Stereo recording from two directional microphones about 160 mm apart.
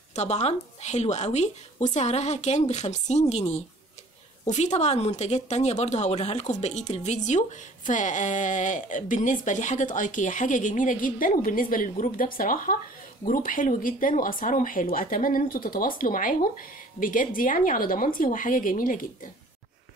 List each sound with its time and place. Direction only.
0.1 s speech: 45° left (ahead or behind)